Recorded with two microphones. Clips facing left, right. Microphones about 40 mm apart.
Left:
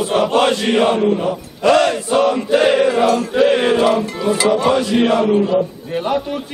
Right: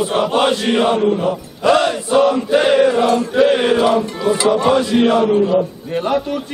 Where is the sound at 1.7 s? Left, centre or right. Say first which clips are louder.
Left 1 dB; centre.